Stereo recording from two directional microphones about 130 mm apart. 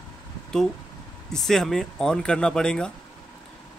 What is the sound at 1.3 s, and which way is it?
Speech, 5° left (ahead or behind).